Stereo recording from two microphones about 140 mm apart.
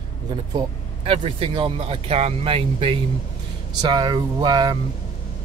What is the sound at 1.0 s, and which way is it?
Speech, 40° right (ahead or behind).